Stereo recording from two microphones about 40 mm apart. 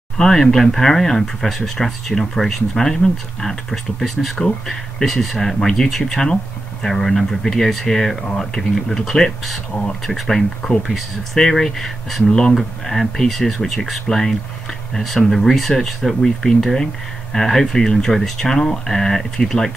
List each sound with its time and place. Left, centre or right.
0.2 s speech: centre
10.8 s speech: centre
11.3 s speech: centre
12.3 s speech: centre
12.5 s speech: centre